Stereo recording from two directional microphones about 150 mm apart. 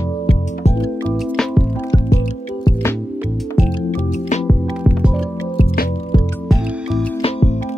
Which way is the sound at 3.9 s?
50° left (ahead or behind).